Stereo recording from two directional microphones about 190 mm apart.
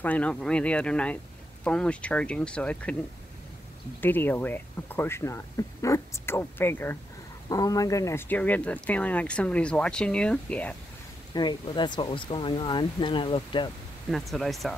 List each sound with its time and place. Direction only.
0.0 s speech: 5° left (ahead or behind)
4.0 s speech: 10° left (ahead or behind)
11.3 s speech: 25° left (ahead or behind)
14.1 s speech: centre (ahead or behind)